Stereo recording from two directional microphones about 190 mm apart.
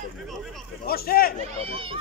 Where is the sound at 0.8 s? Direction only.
55° left (ahead or behind).